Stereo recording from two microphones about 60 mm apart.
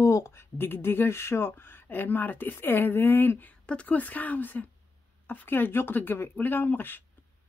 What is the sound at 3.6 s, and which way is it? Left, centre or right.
Speech, left.